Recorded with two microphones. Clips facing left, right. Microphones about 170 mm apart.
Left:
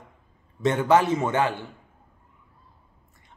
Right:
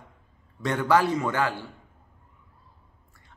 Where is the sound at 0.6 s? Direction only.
20° left (ahead or behind).